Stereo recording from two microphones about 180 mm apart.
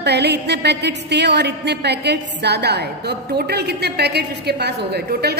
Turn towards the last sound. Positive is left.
turn(degrees=-65)  # may be behind; listen again after turning